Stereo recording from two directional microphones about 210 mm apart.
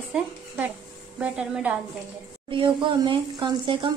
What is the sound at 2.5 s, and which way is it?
A woman's voice, 25° right (ahead or behind).